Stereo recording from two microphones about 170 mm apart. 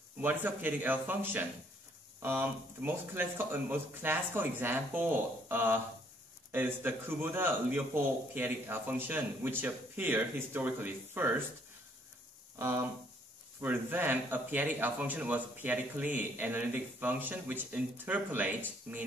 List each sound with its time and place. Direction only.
0.2 s speech: 10° right (ahead or behind)
12.5 s a sound: 15° right (ahead or behind)
13.6 s speech: 10° right (ahead or behind)